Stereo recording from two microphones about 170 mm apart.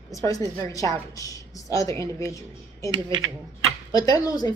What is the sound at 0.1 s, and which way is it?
A woman's voice, 20° left (ahead or behind).